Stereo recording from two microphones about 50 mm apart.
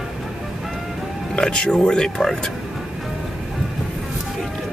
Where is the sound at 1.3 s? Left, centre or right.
Centre.